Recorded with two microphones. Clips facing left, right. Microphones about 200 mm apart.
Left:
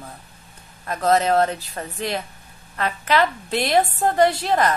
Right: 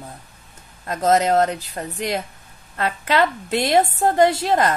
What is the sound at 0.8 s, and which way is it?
Speech, 20° right (ahead or behind).